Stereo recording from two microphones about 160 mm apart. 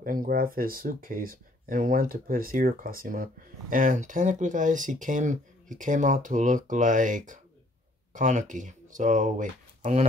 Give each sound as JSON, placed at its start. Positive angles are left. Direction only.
{"t": 0.0, "sound": "speech", "side_deg": -60}